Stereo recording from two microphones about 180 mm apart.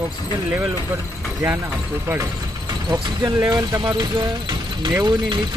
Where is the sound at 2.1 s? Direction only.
15° right (ahead or behind).